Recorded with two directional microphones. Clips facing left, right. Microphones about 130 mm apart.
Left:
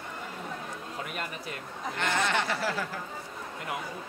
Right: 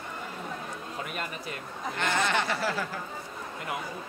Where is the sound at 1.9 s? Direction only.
20° right (ahead or behind).